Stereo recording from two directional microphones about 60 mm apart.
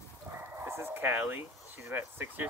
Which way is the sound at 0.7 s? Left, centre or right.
Right.